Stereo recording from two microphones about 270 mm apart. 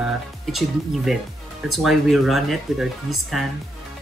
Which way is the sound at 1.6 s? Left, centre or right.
Centre.